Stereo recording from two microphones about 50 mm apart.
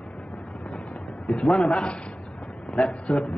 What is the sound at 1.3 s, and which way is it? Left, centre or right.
A man's voice, left.